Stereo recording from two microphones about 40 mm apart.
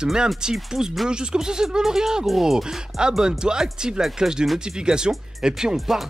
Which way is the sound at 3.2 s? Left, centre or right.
Centre.